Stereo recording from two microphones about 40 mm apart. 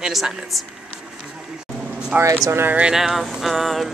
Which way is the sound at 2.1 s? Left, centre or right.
Right.